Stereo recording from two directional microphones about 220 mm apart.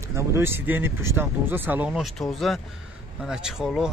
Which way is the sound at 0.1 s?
10° right (ahead or behind).